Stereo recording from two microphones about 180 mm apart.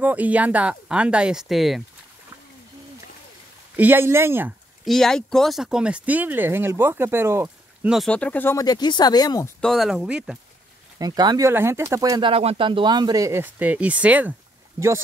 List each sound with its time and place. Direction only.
0.0 s speech: 10° right (ahead or behind)
3.7 s speech: 10° right (ahead or behind)
4.8 s speech: centre (ahead or behind); by 9.5 s 20° left (ahead or behind)
9.6 s speech: centre (ahead or behind)
11.0 s speech: 20° right (ahead or behind)